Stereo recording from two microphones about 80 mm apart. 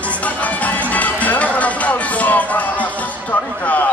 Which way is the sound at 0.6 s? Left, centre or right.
Centre.